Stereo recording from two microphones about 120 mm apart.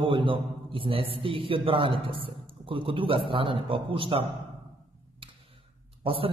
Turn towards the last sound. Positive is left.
turn(degrees=-50)  # may be behind; listen again after turning